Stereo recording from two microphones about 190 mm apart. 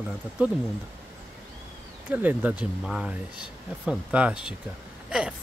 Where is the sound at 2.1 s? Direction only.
10° right (ahead or behind).